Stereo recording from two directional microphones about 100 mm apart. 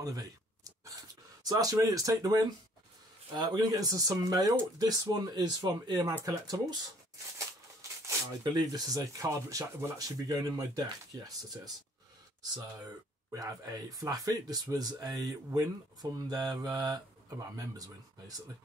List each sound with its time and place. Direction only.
0.0 s a sound: 35° right (ahead or behind)
1.4 s speech: 40° right (ahead or behind)
8.5 s speech: 40° right (ahead or behind)
13.3 s speech: 35° right (ahead or behind)